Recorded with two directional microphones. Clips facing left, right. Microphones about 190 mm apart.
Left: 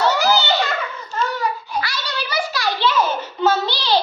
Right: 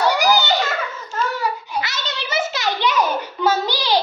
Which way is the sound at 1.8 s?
20° right (ahead or behind).